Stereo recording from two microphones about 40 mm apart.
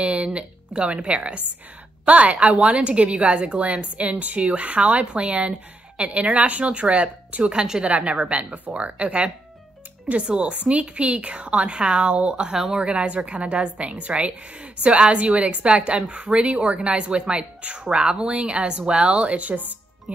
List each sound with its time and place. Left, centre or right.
0.0 s a woman's voice: right
7.9 s a woman's voice: right
12.5 s speech: centre
12.8 s a woman's voice: right